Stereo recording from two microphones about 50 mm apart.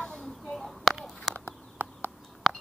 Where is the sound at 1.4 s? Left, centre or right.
Right.